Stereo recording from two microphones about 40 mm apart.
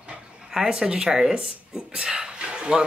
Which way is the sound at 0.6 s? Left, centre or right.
Centre.